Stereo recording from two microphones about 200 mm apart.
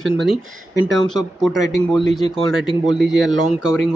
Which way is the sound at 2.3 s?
25° left (ahead or behind).